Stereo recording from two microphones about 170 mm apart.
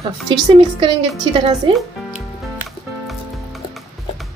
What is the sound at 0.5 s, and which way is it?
Speech, 30° right (ahead or behind).